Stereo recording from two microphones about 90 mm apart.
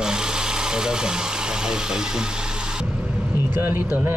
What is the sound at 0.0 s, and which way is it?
Vehicle, 5° right (ahead or behind).